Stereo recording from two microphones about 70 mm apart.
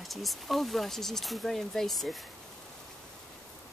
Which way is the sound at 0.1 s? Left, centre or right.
Centre.